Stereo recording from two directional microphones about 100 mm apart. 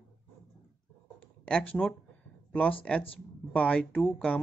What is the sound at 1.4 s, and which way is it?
Speech, 10° left (ahead or behind).